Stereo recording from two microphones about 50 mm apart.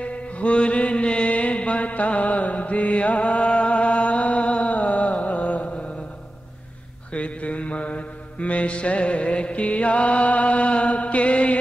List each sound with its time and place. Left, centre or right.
0.0 s music: left
7.1 s mantra: left